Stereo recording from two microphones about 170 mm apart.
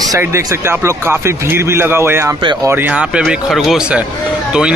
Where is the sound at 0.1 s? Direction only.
15° right (ahead or behind).